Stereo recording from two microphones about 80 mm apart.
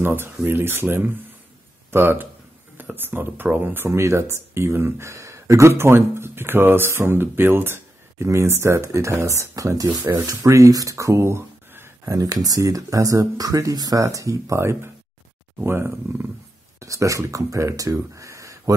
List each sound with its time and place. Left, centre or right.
0.0 s speech: right
12.2 s speech: right
16.8 s speech: right